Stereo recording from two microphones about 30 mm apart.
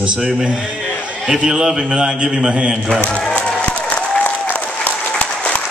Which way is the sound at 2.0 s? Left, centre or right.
Right.